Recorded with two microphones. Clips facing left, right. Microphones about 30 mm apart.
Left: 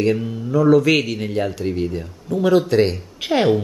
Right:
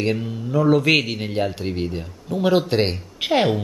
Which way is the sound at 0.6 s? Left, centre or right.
Centre.